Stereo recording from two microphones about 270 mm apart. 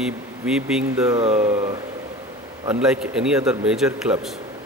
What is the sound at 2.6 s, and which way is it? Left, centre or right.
Speech, centre.